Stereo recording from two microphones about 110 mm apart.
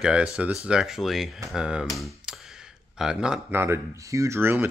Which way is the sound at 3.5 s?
25° right (ahead or behind).